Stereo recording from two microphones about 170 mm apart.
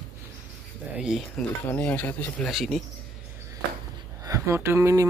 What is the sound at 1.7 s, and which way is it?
Speech, 10° left (ahead or behind).